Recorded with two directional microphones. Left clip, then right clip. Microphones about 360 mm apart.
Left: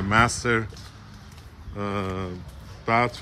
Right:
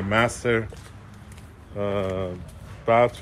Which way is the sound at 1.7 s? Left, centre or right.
Centre.